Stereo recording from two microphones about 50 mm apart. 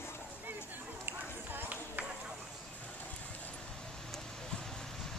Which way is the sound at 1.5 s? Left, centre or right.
Right.